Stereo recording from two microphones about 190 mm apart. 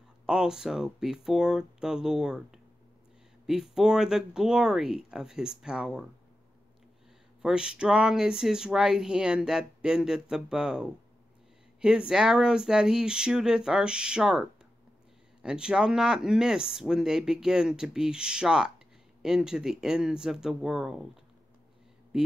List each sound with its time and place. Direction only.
0.3 s speech: 5° right (ahead or behind)
7.4 s speech: 5° right (ahead or behind)
12.1 s speech: 5° right (ahead or behind)
15.4 s speech: 5° right (ahead or behind)
22.1 s speech: 5° right (ahead or behind)